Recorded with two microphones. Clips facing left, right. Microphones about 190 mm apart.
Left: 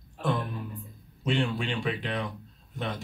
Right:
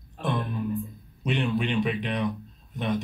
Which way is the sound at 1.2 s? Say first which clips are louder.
Right 2 dB; 20° right (ahead or behind).